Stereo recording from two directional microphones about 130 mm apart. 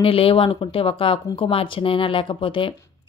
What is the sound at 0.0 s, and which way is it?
Speech, 45° left (ahead or behind).